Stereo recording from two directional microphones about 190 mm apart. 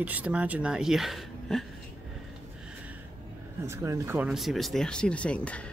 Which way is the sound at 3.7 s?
15° right (ahead or behind).